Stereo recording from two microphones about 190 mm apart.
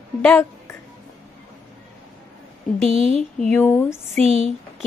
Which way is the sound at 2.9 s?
30° right (ahead or behind).